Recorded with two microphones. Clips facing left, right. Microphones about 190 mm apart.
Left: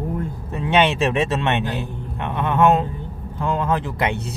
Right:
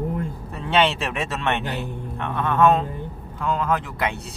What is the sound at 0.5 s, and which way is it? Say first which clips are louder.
Speech: left 3 dB; 15° left (ahead or behind).